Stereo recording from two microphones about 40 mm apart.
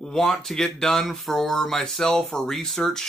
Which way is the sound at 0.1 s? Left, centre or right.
Centre.